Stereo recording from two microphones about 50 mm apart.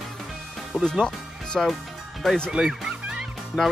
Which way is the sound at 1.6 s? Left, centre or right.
Centre.